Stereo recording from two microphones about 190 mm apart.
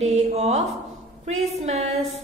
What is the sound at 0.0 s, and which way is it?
Speech, 35° right (ahead or behind).